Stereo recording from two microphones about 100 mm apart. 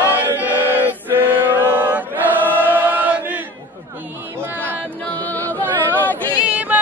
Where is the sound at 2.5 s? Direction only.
20° right (ahead or behind).